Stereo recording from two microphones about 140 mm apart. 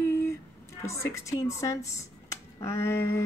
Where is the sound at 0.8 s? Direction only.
20° left (ahead or behind).